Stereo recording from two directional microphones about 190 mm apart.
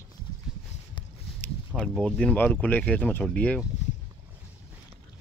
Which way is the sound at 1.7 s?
Centre (ahead or behind).